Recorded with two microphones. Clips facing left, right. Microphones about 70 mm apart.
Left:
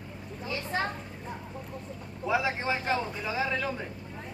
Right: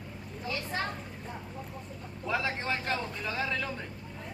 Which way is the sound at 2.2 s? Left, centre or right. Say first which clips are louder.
Left 4 dB; centre.